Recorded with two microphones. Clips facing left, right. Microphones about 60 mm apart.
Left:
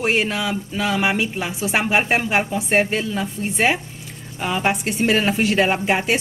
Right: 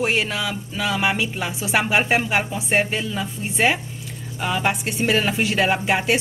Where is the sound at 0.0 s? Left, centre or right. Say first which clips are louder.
Left 2 dB; centre.